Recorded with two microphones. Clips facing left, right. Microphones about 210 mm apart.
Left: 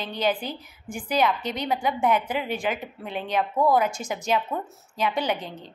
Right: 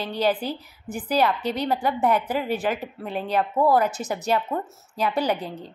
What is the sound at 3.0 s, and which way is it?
Speech, 40° right (ahead or behind).